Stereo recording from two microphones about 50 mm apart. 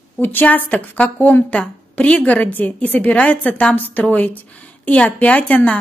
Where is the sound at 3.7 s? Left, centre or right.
Left.